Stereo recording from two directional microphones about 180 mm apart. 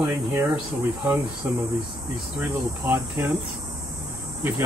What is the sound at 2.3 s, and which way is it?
Insect, 5° right (ahead or behind).